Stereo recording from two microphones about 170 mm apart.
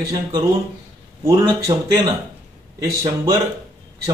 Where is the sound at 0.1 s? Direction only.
20° right (ahead or behind).